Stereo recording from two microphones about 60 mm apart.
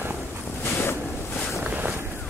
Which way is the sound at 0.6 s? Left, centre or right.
Left.